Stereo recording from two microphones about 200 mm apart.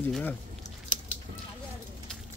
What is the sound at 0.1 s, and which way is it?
Speech, 10° left (ahead or behind).